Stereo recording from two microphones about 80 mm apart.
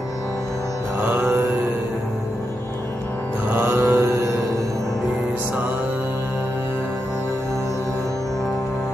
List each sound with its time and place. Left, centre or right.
1.0 s mantra: right
3.5 s mantra: right